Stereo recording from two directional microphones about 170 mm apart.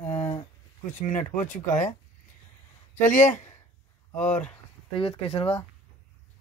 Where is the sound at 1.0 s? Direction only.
45° left (ahead or behind).